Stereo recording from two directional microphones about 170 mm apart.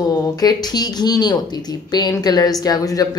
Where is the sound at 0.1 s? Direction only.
25° left (ahead or behind).